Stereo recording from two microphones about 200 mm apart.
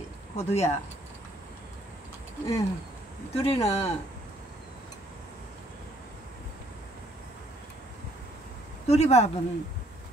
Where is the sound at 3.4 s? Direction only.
30° left (ahead or behind).